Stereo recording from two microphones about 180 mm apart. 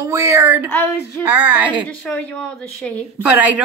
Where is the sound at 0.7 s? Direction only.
10° left (ahead or behind).